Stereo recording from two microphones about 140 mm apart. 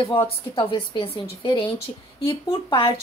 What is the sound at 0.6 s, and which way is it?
Speech, 40° left (ahead or behind).